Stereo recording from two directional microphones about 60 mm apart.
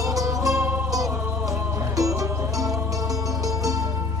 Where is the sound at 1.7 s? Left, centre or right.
Right.